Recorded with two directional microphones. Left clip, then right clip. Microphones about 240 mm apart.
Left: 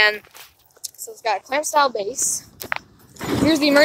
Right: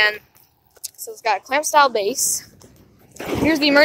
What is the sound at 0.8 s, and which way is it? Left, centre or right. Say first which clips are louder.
Speech: right 2 dB; centre.